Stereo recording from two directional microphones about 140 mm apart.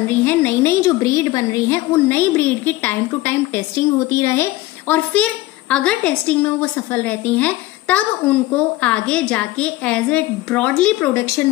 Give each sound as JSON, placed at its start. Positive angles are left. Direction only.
{"t": 0.1, "sound": "a woman's voice", "side_deg": 15}